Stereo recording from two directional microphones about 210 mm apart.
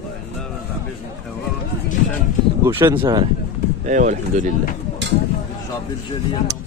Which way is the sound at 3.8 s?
35° right (ahead or behind).